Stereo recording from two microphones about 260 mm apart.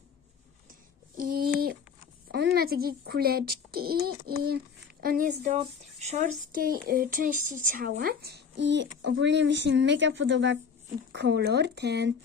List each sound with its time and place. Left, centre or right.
1.1 s a sound: right
3.1 s a child's voice: right
4.3 s speech: right
4.6 s speech: right